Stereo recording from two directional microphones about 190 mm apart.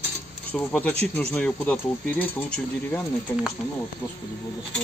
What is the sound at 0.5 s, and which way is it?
Speech, 10° left (ahead or behind).